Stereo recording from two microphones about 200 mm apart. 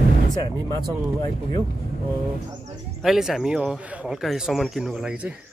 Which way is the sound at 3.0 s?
Centre (ahead or behind).